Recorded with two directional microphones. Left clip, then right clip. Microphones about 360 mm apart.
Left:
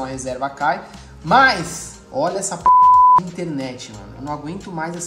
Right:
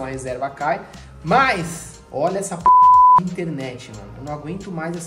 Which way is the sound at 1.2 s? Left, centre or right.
Centre.